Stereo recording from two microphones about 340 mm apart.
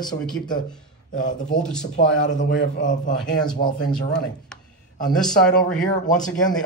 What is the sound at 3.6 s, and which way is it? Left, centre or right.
Speech, centre.